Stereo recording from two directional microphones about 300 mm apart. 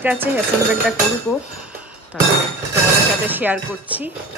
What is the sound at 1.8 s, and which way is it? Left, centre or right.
Music, centre.